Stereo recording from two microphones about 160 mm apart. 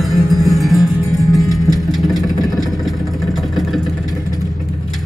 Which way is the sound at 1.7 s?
Centre (ahead or behind).